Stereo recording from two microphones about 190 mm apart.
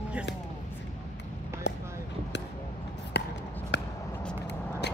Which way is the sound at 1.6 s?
70° left (ahead or behind).